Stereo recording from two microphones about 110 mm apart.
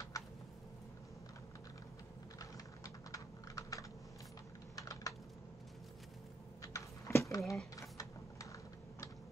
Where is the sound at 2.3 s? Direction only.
30° left (ahead or behind).